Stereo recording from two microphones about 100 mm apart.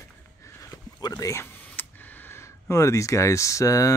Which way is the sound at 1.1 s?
30° left (ahead or behind).